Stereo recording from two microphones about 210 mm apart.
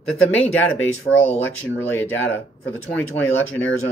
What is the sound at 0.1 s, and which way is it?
Speech, 5° left (ahead or behind).